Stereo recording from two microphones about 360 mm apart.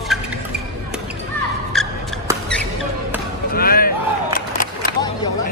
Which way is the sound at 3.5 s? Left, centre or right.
Left.